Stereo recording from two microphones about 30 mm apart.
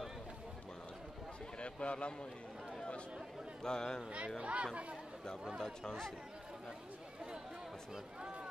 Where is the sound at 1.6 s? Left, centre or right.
Left.